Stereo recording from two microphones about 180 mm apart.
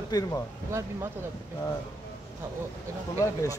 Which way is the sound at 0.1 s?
25° left (ahead or behind).